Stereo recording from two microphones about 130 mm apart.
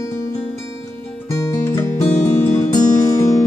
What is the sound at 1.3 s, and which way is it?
Music, 25° left (ahead or behind).